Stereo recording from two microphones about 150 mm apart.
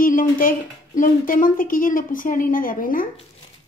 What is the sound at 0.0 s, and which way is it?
Speech, 65° left (ahead or behind).